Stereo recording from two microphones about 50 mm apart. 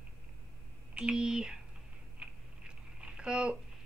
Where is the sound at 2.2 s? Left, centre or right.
Centre.